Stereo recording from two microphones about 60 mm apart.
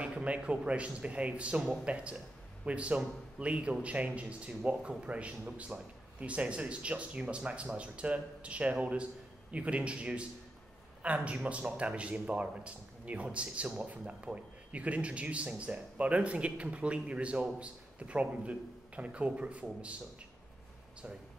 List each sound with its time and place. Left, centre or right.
0.0 s a man's voice: right